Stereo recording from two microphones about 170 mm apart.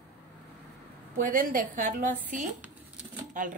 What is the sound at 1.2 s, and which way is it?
A woman's voice, 50° right (ahead or behind).